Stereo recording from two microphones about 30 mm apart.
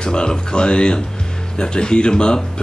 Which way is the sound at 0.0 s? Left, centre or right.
Left.